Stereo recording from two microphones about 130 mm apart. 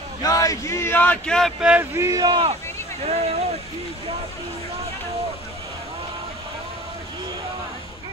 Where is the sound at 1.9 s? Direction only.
25° right (ahead or behind).